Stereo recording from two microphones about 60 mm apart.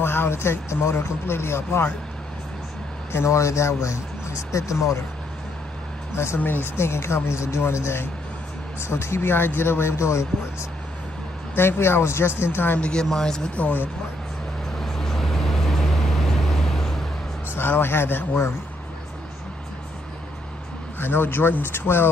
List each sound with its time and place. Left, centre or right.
0.0 s speech: left
3.1 s speech: left
6.1 s speech: left
11.5 s speech: left
12.7 s speech: centre
13.0 s speech: centre
13.6 s speech: left
14.8 s vehicle: centre
17.6 s speech: left
21.0 s speech: left